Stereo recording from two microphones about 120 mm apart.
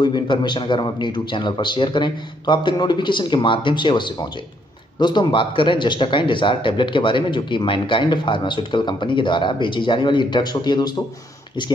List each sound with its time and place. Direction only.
0.0 s a man's voice: 35° left (ahead or behind)